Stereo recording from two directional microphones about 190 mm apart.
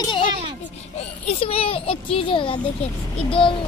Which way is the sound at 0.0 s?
25° left (ahead or behind).